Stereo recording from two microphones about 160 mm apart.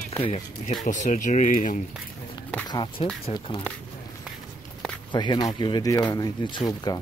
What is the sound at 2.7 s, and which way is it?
Speech, 30° left (ahead or behind).